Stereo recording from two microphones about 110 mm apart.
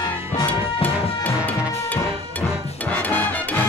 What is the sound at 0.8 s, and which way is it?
Music, 15° left (ahead or behind).